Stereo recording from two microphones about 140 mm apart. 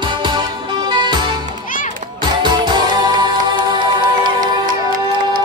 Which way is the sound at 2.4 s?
35° right (ahead or behind).